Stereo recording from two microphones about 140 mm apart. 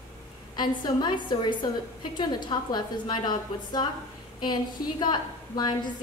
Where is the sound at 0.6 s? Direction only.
35° left (ahead or behind).